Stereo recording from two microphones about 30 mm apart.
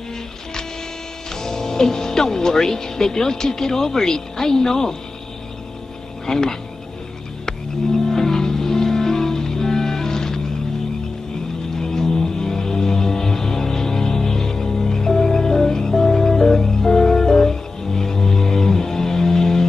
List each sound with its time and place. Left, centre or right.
1.3 s speech: centre
6.2 s speech: left
8.1 s music: centre
11.8 s music: centre